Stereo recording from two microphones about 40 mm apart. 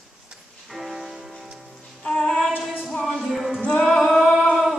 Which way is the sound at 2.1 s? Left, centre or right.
Centre.